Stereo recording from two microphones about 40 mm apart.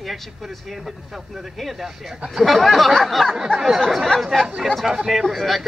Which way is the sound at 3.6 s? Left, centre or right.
Centre.